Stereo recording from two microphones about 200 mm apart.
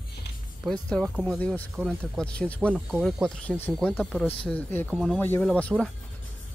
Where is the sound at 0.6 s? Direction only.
5° left (ahead or behind).